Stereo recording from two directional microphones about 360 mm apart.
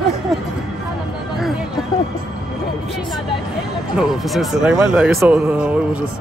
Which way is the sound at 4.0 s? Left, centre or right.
Centre.